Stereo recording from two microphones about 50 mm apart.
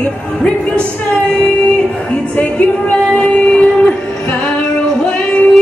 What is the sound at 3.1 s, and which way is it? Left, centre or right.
Music, left.